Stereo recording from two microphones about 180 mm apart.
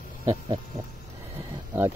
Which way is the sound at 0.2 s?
20° right (ahead or behind).